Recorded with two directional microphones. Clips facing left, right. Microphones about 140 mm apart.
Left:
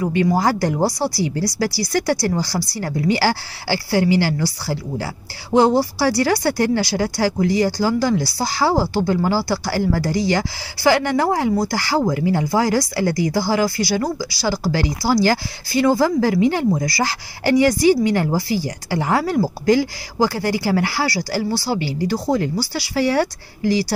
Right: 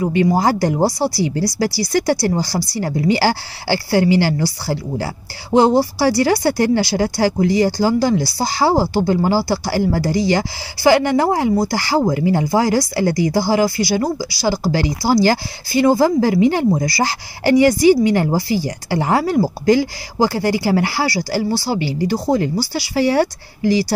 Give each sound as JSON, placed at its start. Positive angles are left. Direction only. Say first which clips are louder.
{"t": 0.0, "sound": "speech", "louder": "right 2 dB", "side_deg": -20}